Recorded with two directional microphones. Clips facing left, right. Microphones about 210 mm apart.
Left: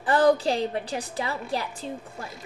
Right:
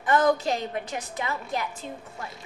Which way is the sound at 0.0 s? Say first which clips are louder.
Left 2 dB; 35° left (ahead or behind).